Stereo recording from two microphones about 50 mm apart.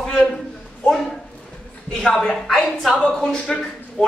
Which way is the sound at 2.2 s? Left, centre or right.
Centre.